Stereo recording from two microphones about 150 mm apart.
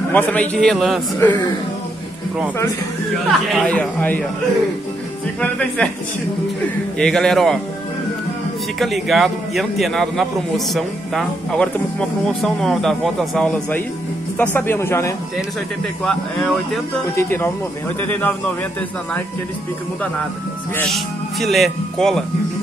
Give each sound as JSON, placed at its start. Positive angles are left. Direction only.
{"t": 0.1, "sound": "a man's voice", "side_deg": 10}
{"t": 3.3, "sound": "a man's voice", "side_deg": 5}
{"t": 5.4, "sound": "a man's voice", "side_deg": 10}
{"t": 7.0, "sound": "a man's voice", "side_deg": 5}
{"t": 8.7, "sound": "a man's voice", "side_deg": 0}
{"t": 14.4, "sound": "a man's voice", "side_deg": 15}
{"t": 16.0, "sound": "a man's voice", "side_deg": 5}
{"t": 17.1, "sound": "a man's voice", "side_deg": 15}
{"t": 20.9, "sound": "speech", "side_deg": 0}